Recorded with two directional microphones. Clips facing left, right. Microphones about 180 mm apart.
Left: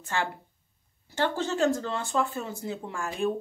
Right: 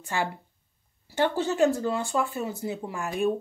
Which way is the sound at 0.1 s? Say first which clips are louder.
Right 1 dB; 10° right (ahead or behind).